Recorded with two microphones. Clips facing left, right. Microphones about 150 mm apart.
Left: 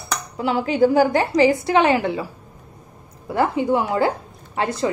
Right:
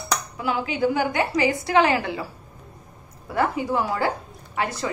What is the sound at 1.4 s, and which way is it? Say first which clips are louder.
A woman's voice: left 4 dB; 25° left (ahead or behind).